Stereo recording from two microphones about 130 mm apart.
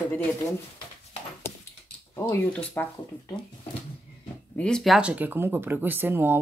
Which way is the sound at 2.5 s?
10° left (ahead or behind).